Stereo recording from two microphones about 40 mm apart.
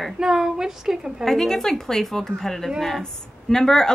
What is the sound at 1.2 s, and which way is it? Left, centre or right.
A woman's voice, centre.